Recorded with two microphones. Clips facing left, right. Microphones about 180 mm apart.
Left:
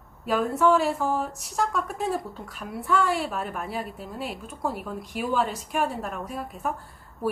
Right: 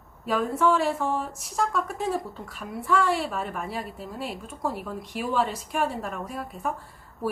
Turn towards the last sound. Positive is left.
turn(degrees=0)  # may be behind; listen again after turning